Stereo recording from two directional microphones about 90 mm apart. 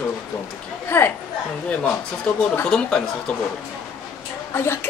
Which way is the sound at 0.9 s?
25° left (ahead or behind).